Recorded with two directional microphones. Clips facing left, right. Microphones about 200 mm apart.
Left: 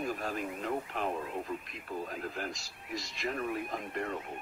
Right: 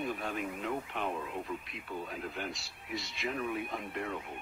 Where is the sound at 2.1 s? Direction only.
Centre (ahead or behind).